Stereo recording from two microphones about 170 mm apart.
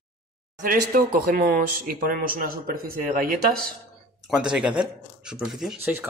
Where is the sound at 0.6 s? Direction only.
60° right (ahead or behind).